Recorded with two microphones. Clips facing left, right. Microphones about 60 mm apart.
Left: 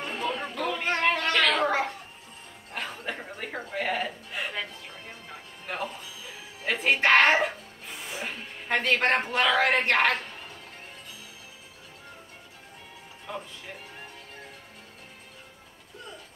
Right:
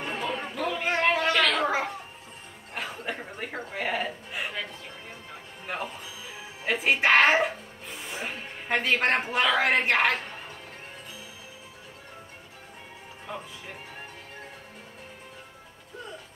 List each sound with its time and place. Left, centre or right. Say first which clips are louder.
0.0 s chatter: even; right
0.4 s a sound: even; centre
2.7 s music: right 1 dB; centre
3.3 s a sound: left 1 dB; centre
5.7 s music: even; centre
8.3 s a man's voice: even; centre
13.3 s music: left 1 dB; centre